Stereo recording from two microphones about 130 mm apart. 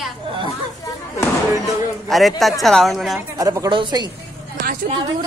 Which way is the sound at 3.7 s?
35° right (ahead or behind).